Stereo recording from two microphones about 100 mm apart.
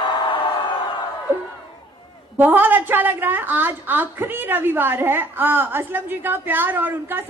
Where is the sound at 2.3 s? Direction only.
20° right (ahead or behind).